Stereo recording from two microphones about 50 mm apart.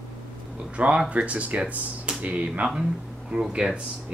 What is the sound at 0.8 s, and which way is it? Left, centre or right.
Speech, right.